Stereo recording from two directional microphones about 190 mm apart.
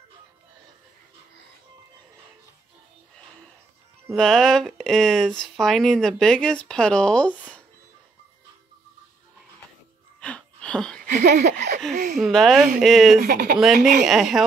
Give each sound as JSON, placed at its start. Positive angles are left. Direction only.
{"t": 4.1, "sound": "speech", "side_deg": 5}
{"t": 10.2, "sound": "wheeze", "side_deg": 5}
{"t": 11.1, "sound": "a sound", "side_deg": -40}
{"t": 12.2, "sound": "speech", "side_deg": 0}
{"t": 13.2, "sound": "speech", "side_deg": -50}
{"t": 14.0, "sound": "speech", "side_deg": 0}